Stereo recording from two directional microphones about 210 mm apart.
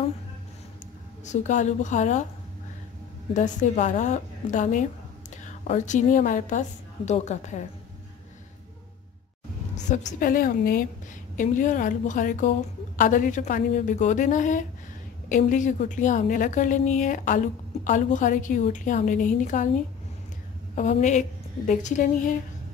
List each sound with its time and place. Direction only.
1.2 s a woman's voice: 35° left (ahead or behind)
3.3 s a woman's voice: 35° left (ahead or behind)
9.8 s a woman's voice: 35° left (ahead or behind)
20.7 s a woman's voice: 35° left (ahead or behind)